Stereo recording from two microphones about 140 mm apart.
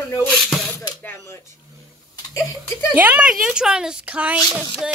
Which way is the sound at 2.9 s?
10° right (ahead or behind).